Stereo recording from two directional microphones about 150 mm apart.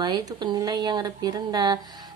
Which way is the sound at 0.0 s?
25° right (ahead or behind).